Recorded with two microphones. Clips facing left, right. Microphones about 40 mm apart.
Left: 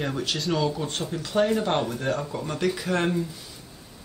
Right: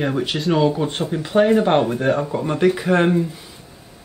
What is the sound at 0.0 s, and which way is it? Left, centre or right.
Speech, right.